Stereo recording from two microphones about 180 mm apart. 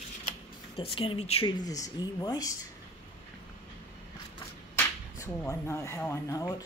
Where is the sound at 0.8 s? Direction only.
30° left (ahead or behind).